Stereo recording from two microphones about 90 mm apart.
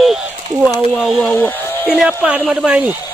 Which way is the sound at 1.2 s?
15° left (ahead or behind).